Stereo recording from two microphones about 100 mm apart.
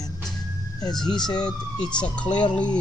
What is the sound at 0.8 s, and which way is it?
Speech, 45° left (ahead or behind).